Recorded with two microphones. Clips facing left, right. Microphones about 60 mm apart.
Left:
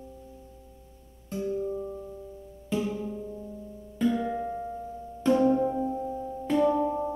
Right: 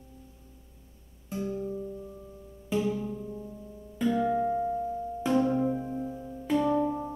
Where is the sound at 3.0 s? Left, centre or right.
Centre.